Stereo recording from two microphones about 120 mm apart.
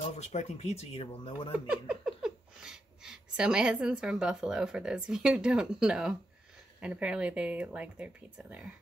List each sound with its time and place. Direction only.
0.2 s speech: 70° left (ahead or behind); by 1.5 s 50° left (ahead or behind)
1.7 s speech: 5° right (ahead or behind)